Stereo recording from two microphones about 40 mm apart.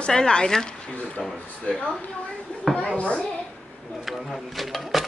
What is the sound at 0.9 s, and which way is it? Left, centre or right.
Speech, left.